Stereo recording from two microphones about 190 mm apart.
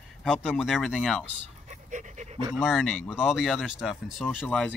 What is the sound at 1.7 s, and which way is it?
Dog, 40° right (ahead or behind).